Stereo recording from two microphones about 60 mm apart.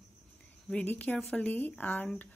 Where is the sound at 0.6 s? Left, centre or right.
Left.